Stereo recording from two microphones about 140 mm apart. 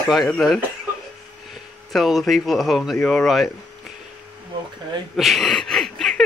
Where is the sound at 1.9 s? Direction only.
Centre (ahead or behind).